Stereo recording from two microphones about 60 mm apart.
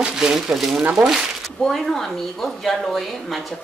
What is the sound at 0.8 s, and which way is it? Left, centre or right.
Speech, right.